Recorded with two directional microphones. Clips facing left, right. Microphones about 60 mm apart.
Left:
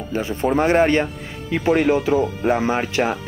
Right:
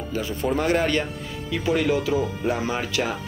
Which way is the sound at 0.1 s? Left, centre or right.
Left.